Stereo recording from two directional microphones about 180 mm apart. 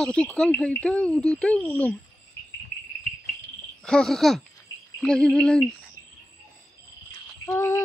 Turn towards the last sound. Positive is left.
turn(degrees=15)  # may be behind; listen again after turning